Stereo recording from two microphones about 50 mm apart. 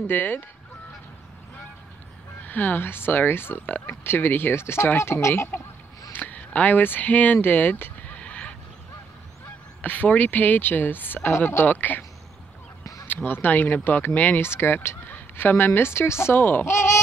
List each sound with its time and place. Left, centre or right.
0.0 s speech: left
2.4 s speech: left
4.0 s speech: left
6.1 s speech: left
8.2 s horse: left
9.8 s speech: left
13.0 s speech: left
14.4 s fowl: left
15.0 s a woman's voice: left
16.3 s speech: left
16.6 s speech: left